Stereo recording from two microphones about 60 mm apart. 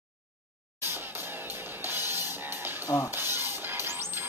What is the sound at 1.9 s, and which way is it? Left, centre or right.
Music, right.